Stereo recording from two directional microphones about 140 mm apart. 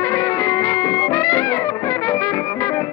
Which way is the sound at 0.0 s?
20° left (ahead or behind).